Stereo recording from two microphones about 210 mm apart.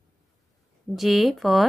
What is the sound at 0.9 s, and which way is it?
Speech, centre (ahead or behind).